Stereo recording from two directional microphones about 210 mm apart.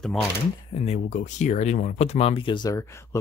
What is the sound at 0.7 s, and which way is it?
Speech, 30° left (ahead or behind).